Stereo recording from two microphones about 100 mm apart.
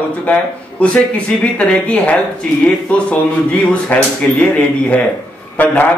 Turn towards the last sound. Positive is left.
turn(degrees=15)  # may be behind; listen again after turning